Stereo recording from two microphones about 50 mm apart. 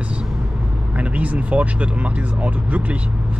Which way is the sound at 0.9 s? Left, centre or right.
Right.